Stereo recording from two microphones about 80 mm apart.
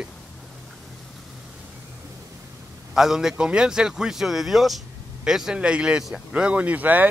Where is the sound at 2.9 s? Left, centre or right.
Centre.